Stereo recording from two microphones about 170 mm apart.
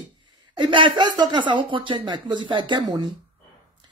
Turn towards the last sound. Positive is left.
turn(degrees=-25)  # may be behind; listen again after turning